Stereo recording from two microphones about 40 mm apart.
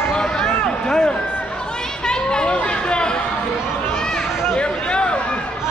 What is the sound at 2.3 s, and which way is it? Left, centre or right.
Chatter, left.